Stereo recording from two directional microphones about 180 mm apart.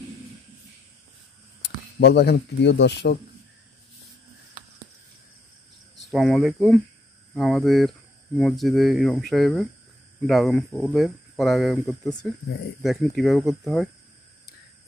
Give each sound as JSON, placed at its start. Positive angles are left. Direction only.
{"t": 1.6, "sound": "speech", "side_deg": 65}
{"t": 6.0, "sound": "speech", "side_deg": 0}